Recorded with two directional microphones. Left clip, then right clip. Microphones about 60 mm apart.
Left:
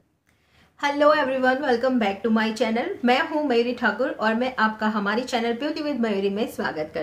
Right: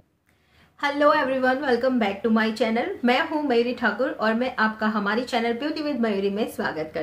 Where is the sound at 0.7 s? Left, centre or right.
Centre.